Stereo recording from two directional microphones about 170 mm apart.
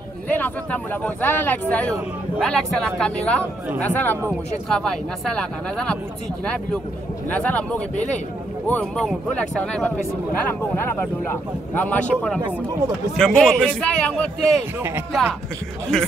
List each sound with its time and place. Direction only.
0.3 s a man's voice: 10° left (ahead or behind)
7.2 s speech: 10° left (ahead or behind)
7.9 s speech: 45° left (ahead or behind)
8.6 s speech: 5° left (ahead or behind)
11.7 s a man's voice: 10° left (ahead or behind)
15.9 s a man's voice: 5° left (ahead or behind)